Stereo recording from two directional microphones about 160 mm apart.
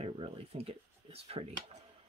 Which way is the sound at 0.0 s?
40° right (ahead or behind).